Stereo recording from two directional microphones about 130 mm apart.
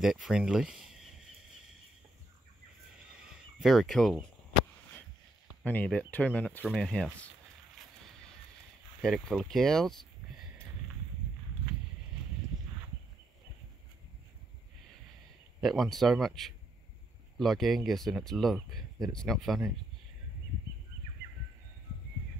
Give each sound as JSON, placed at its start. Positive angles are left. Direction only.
{"t": 0.0, "sound": "speech", "side_deg": -5}
{"t": 3.5, "sound": "speech", "side_deg": 0}
{"t": 5.6, "sound": "speech", "side_deg": 10}
{"t": 9.0, "sound": "speech", "side_deg": 0}
{"t": 15.6, "sound": "speech", "side_deg": 0}
{"t": 18.8, "sound": "a sound", "side_deg": -30}
{"t": 19.1, "sound": "speech", "side_deg": 0}